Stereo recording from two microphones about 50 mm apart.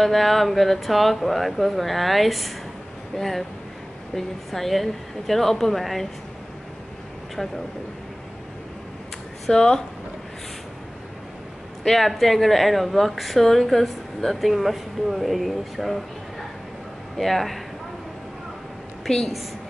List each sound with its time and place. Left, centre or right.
0.0 s speech: centre
9.5 s speech: centre
11.8 s speech: centre
19.0 s speech: centre